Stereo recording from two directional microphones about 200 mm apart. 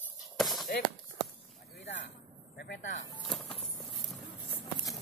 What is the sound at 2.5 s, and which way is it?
Speech, 55° left (ahead or behind).